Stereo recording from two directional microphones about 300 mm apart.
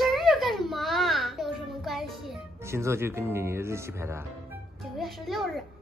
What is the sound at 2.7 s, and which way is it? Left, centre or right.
Speech, centre.